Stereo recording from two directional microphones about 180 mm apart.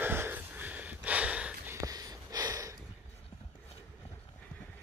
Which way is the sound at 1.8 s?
20° right (ahead or behind).